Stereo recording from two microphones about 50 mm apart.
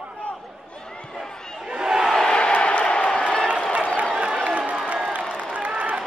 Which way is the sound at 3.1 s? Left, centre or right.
Centre.